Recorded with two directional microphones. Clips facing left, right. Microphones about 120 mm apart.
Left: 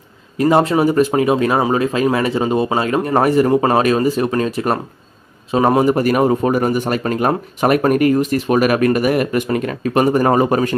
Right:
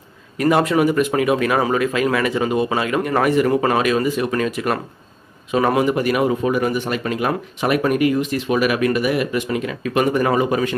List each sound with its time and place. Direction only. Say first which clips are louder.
0.4 s a man's voice: left 3 dB; 30° left (ahead or behind)